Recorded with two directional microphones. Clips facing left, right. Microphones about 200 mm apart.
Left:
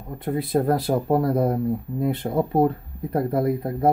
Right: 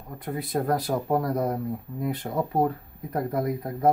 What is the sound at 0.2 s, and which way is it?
Speech, 30° left (ahead or behind).